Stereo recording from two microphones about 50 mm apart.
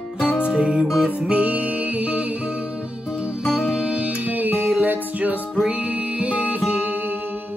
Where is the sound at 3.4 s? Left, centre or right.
Centre.